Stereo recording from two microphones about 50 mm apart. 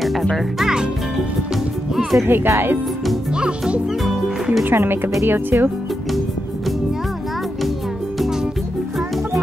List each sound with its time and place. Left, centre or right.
0.0 s music: centre
0.6 s a child's voice: centre
2.0 s speech: centre
2.2 s speech: right
3.3 s a child's voice: centre
4.6 s speech: right